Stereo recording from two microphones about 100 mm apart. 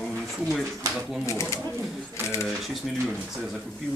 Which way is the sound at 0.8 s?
35° right (ahead or behind).